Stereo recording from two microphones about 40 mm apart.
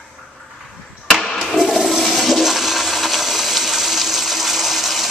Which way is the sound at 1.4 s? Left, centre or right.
Centre.